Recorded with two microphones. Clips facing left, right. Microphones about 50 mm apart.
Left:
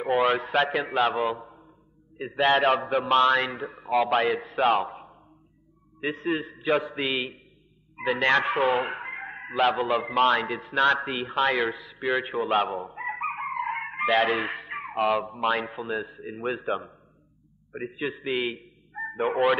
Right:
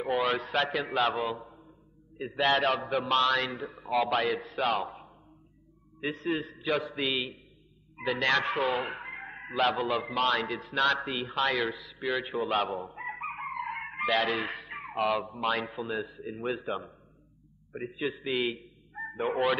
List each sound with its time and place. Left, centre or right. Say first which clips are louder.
0.2 s a man's voice: left 5 dB; left
2.8 s a man's voice: left 4 dB; centre
3.1 s a man's voice: left 6 dB; left
3.8 s a man's voice: left 4 dB; centre
4.6 s a sound: left 7 dB; left
5.9 s a man's voice: left 3 dB; left
12.6 s chicken: left 4 dB; centre
15.0 s a man's voice: left 4 dB; centre